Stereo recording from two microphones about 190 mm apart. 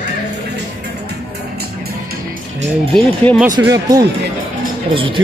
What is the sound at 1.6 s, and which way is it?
Music, 55° right (ahead or behind).